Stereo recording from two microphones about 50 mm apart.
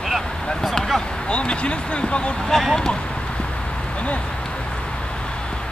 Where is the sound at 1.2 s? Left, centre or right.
Centre.